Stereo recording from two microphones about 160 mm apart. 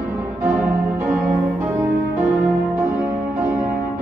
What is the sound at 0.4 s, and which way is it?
Music, 15° right (ahead or behind).